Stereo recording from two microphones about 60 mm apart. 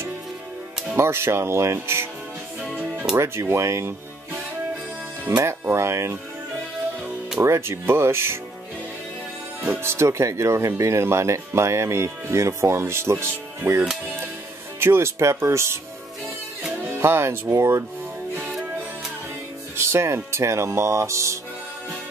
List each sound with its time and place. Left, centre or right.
0.9 s speech: right
2.7 s music: right
3.2 s speech: right
5.4 s speech: right
7.4 s speech: right
9.6 s speech: right
17.0 s speech: right
19.8 s music: right
20.2 s speech: right